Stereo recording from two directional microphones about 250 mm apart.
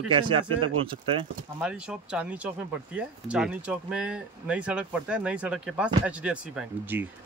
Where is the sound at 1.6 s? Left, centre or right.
Centre.